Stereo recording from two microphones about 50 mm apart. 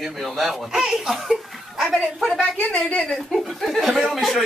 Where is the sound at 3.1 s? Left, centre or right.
Centre.